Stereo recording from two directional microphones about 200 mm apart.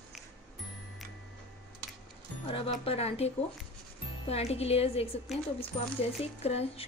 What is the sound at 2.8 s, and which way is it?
Speech, 30° left (ahead or behind).